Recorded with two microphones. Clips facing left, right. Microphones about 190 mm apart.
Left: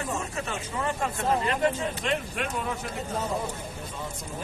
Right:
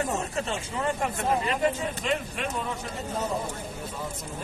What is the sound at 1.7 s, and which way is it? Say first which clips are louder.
Speech: even; 5° right (ahead or behind).